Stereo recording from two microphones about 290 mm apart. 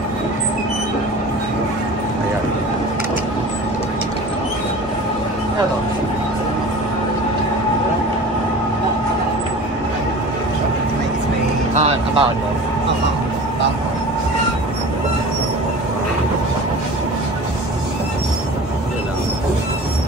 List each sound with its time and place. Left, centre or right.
11.7 s vehicle: right